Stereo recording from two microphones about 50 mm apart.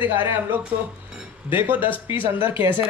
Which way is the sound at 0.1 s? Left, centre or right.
Right.